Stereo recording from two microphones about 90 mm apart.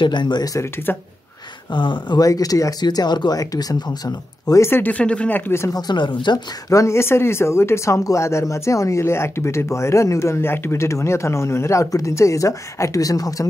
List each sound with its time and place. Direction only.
0.0 s speech: 60° left (ahead or behind)
0.9 s speech: 25° left (ahead or behind)
1.7 s speech: 65° left (ahead or behind)
2.1 s speech: 45° left (ahead or behind)
4.6 s speech: 25° left (ahead or behind)
5.5 s speech: 30° left (ahead or behind)
5.8 s speech: 55° left (ahead or behind)
6.7 s speech: 35° left (ahead or behind)